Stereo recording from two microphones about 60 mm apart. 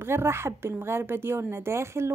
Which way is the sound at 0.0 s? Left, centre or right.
Right.